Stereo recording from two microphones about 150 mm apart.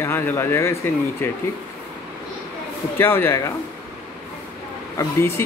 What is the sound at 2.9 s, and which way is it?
Speech, 15° left (ahead or behind).